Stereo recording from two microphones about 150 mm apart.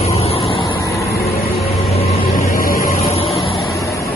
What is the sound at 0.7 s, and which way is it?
Vehicle, 20° left (ahead or behind).